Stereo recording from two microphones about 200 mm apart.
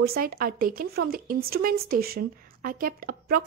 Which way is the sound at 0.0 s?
50° right (ahead or behind).